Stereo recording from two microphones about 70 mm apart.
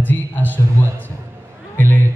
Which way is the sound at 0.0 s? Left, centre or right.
Left.